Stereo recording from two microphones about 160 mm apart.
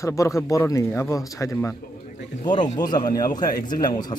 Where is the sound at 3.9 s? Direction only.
25° left (ahead or behind).